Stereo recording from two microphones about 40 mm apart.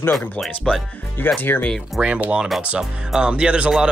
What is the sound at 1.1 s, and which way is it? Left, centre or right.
Speech, left.